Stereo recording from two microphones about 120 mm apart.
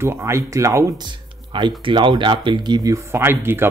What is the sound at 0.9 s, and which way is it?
Speech, 40° right (ahead or behind).